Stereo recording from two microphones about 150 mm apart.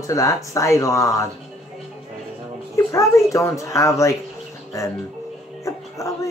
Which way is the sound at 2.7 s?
20° left (ahead or behind).